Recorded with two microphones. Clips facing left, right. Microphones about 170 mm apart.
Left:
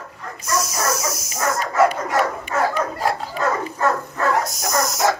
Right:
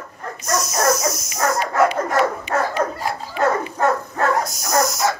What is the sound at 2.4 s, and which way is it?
Dog, 60° left (ahead or behind).